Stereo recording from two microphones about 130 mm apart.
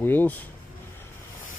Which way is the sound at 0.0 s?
15° left (ahead or behind).